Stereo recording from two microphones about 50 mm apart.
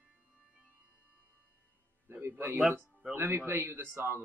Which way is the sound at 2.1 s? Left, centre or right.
Right.